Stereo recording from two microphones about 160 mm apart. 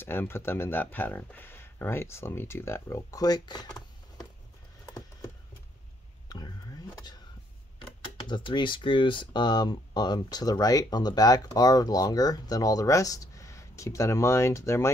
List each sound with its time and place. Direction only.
0.0 s speech: 15° left (ahead or behind)
6.2 s whispering: 25° left (ahead or behind)
8.3 s speech: 30° left (ahead or behind)